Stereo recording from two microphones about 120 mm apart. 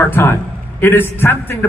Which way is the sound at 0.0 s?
20° left (ahead or behind).